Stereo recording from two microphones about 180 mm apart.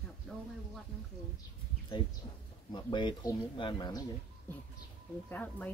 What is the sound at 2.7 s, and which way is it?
Speech, 25° left (ahead or behind).